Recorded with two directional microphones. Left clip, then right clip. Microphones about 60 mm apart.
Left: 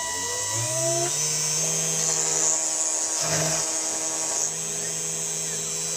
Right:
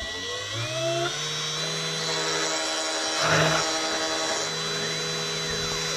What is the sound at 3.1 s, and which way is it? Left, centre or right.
Wood, left.